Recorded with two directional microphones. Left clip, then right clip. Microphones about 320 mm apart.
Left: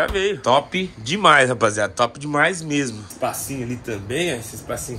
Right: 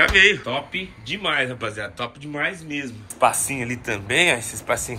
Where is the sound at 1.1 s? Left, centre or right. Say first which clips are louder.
Left 9 dB; left.